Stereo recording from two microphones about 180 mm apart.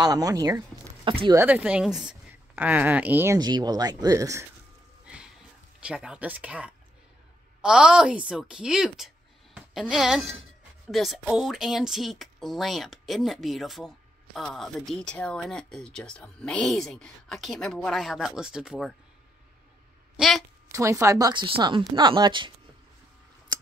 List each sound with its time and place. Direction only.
0.0 s a woman's voice: 20° right (ahead or behind)
3.3 s speech: 25° right (ahead or behind)
5.0 s music: 5° right (ahead or behind)
5.8 s a woman's voice: 5° right (ahead or behind)
20.2 s a woman's voice: centre (ahead or behind)
20.6 s speech: 15° right (ahead or behind)
23.5 s a sound: 25° right (ahead or behind)